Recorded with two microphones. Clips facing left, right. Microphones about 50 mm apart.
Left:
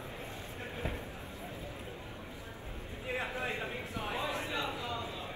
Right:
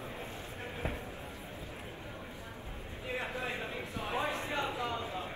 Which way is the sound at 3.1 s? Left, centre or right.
Left.